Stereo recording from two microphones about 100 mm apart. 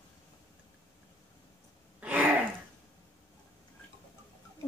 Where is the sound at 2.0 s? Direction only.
15° right (ahead or behind).